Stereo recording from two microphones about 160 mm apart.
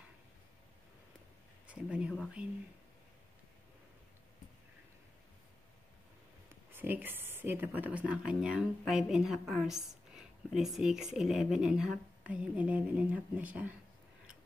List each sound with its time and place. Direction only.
1.7 s speech: 5° right (ahead or behind)
6.7 s speech: 10° right (ahead or behind)